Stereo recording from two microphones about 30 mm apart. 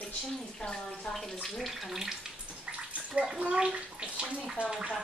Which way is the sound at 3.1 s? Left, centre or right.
Right.